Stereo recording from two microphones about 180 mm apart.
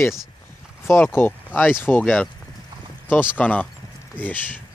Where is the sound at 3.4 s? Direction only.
10° left (ahead or behind).